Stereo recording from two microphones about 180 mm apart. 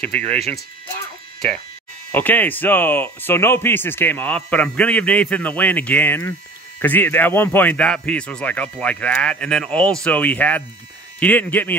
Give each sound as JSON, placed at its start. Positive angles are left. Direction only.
{"t": 0.2, "sound": "speech", "side_deg": -35}
{"t": 2.1, "sound": "speech", "side_deg": 10}